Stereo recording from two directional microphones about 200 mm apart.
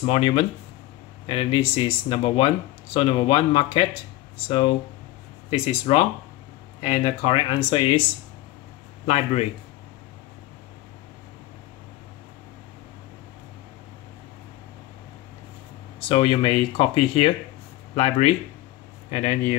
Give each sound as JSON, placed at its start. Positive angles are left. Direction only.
{"t": 0.0, "sound": "speech", "side_deg": 30}
{"t": 9.0, "sound": "speech", "side_deg": 30}
{"t": 16.0, "sound": "speech", "side_deg": 25}